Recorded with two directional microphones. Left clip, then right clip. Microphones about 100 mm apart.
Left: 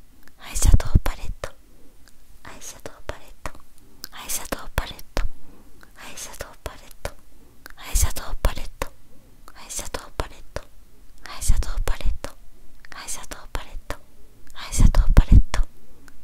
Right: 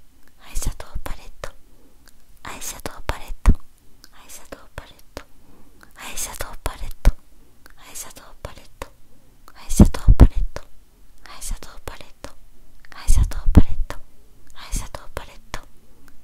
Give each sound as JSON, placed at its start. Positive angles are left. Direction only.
{"t": 0.2, "sound": "whispering", "side_deg": 15}
{"t": 2.0, "sound": "whispering", "side_deg": -20}
{"t": 4.0, "sound": "whispering", "side_deg": 25}
{"t": 5.8, "sound": "whispering", "side_deg": -10}
{"t": 7.6, "sound": "whispering", "side_deg": 15}
{"t": 9.5, "sound": "whispering", "side_deg": 0}
{"t": 11.2, "sound": "whispering", "side_deg": 10}